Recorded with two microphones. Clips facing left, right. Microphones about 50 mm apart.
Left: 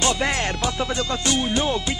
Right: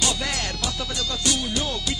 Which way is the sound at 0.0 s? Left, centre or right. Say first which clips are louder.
Left 5 dB; left.